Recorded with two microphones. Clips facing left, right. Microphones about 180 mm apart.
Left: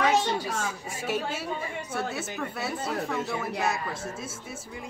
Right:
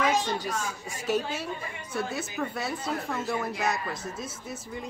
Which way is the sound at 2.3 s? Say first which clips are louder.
Right 1 dB; 5° left (ahead or behind).